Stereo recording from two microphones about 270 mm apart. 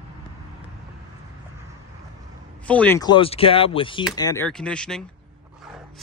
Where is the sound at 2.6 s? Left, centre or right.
Centre.